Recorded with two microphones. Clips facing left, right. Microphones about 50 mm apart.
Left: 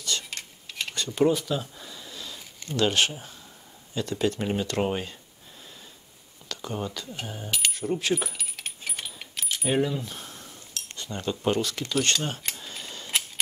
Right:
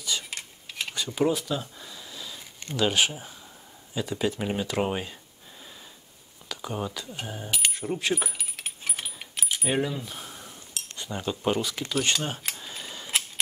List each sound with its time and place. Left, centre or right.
0.0 s a sound: centre
2.7 s speech: centre
6.5 s coin: centre
11.9 s mechanisms: centre